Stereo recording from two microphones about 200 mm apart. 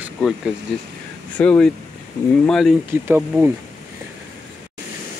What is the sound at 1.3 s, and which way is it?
Speech, 5° left (ahead or behind).